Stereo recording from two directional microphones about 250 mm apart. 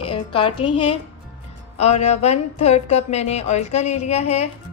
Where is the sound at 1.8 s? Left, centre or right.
Left.